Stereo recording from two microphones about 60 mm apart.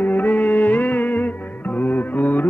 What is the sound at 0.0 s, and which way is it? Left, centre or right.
Music, left.